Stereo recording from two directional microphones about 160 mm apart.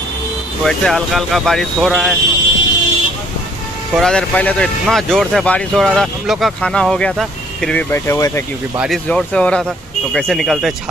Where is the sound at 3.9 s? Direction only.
5° left (ahead or behind).